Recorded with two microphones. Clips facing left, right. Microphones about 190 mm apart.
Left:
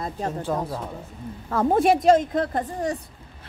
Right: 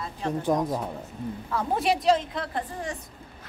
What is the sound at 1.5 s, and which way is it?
A woman's voice, 50° left (ahead or behind).